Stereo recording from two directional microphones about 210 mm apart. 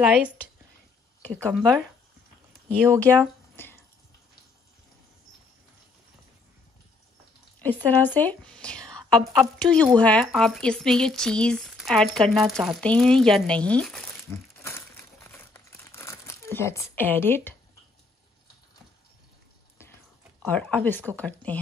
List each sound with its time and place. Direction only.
0.0 s speech: 5° right (ahead or behind)
1.2 s speech: 5° left (ahead or behind)
3.5 s a sound: 10° left (ahead or behind)
7.6 s speech: 10° left (ahead or behind)
15.3 s crumpling: 10° left (ahead or behind)
20.4 s speech: 5° left (ahead or behind)